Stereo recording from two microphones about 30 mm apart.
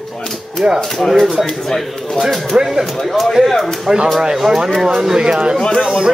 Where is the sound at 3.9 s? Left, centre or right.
Right.